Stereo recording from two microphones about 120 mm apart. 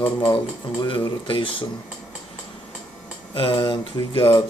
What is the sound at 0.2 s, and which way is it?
Speech, 45° left (ahead or behind).